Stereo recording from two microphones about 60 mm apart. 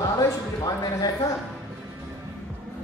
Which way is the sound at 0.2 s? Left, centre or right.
Left.